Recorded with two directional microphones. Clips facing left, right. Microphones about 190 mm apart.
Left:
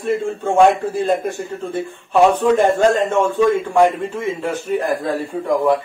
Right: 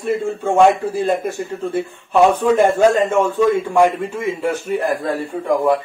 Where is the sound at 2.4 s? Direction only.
10° right (ahead or behind).